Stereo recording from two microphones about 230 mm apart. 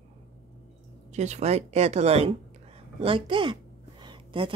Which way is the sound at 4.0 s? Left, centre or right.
Right.